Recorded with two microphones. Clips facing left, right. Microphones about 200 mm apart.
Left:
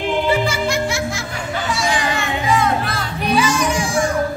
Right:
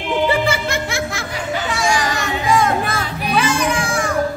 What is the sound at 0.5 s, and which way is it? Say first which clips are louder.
Music: left 1 dB; 55° right (ahead or behind).